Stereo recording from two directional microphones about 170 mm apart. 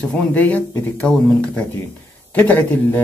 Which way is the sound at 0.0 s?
5° left (ahead or behind).